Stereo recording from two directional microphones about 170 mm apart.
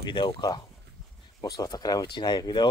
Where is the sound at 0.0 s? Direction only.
25° left (ahead or behind).